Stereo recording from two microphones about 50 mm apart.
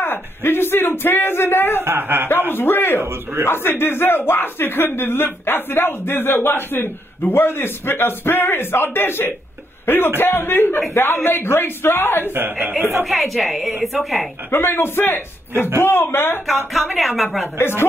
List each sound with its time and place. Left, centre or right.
0.0 s speech: left
1.8 s a man's voice: right
2.5 s speech: left
3.0 s a man's voice: right
3.4 s speech: left
12.4 s speech: right
13.0 s a woman's voice: centre
14.5 s speech: left
16.7 s a woman's voice: centre
17.6 s speech: left